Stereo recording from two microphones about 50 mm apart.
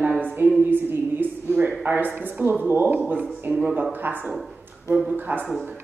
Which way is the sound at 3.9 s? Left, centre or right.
Right.